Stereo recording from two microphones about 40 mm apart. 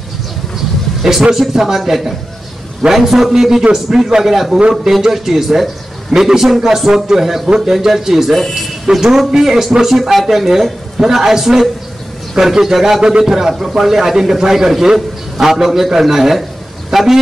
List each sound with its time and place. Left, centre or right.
1.3 s a man's voice: centre
7.4 s a man's voice: right
7.7 s speech: centre